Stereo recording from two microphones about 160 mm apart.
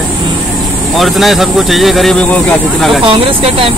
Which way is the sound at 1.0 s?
Centre (ahead or behind).